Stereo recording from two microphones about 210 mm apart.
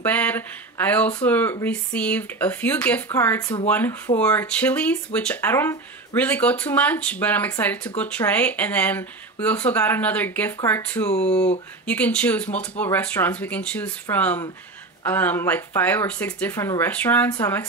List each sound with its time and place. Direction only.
0.0 s speech: 5° left (ahead or behind)
11.1 s speech: 30° left (ahead or behind)
11.8 s speech: 5° left (ahead or behind)